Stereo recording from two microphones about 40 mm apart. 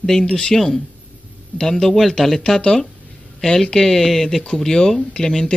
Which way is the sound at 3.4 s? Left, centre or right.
Centre.